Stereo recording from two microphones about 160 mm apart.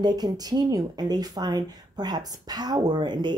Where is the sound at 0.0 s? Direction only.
25° right (ahead or behind).